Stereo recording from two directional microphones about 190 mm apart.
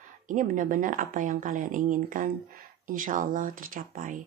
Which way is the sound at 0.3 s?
45° right (ahead or behind).